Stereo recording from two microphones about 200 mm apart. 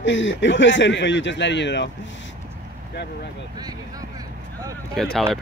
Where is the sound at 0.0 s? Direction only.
65° left (ahead or behind).